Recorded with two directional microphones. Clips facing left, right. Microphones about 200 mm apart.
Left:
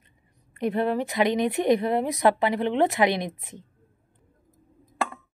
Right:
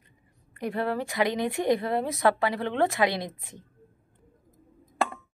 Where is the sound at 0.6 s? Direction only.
20° left (ahead or behind).